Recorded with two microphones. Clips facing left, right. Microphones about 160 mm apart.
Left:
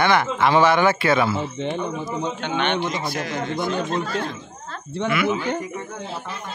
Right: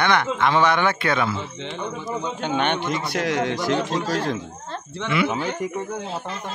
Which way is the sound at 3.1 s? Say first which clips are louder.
Right 3 dB; 70° right (ahead or behind).